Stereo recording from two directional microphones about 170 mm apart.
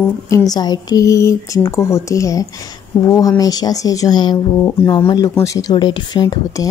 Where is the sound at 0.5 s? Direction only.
25° left (ahead or behind).